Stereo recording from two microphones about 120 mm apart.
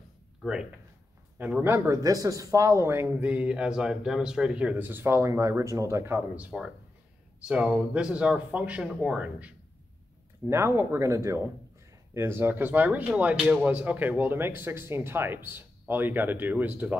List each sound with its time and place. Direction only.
1.6 s speech: 25° right (ahead or behind); by 9.5 s 10° right (ahead or behind)
10.5 s speech: 20° right (ahead or behind)